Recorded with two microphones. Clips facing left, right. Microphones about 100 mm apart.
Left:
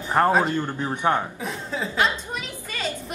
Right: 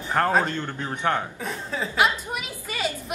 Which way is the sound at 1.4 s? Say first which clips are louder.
Left 1 dB; centre (ahead or behind).